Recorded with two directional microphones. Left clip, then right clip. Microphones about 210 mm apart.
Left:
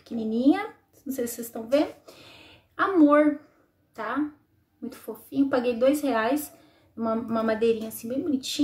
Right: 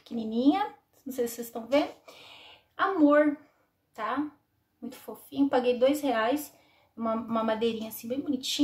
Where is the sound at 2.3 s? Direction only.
Centre (ahead or behind).